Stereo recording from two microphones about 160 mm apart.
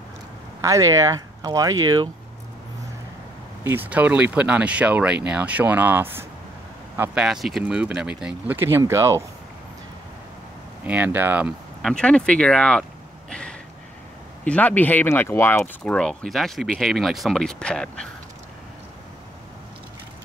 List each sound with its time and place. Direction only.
0.6 s speech: 20° right (ahead or behind)
3.6 s speech: 10° right (ahead or behind)
10.9 s speech: 10° right (ahead or behind)
11.8 s speech: 5° left (ahead or behind)
13.3 s a sound: 5° left (ahead or behind)
14.4 s speech: 10° left (ahead or behind)
15.8 s speech: 5° left (ahead or behind)